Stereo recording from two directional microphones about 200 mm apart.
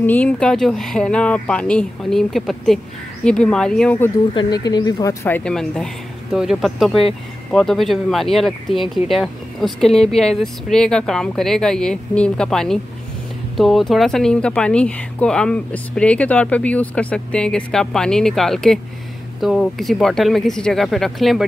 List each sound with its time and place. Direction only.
0.0 s speech: 10° left (ahead or behind)
4.3 s speech: 20° left (ahead or behind); by 21.5 s centre (ahead or behind)